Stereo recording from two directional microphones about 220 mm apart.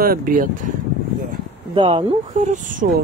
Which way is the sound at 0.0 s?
40° right (ahead or behind).